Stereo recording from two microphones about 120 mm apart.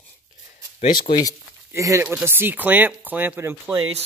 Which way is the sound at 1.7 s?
25° right (ahead or behind).